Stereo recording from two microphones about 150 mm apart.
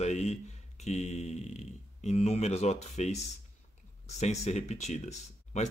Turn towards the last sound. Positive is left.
turn(degrees=45)  # may be behind; listen again after turning